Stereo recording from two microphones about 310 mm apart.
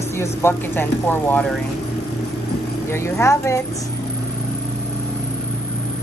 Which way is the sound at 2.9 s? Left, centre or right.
Centre.